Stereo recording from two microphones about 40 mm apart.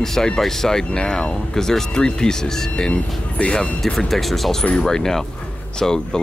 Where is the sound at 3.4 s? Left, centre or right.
Left.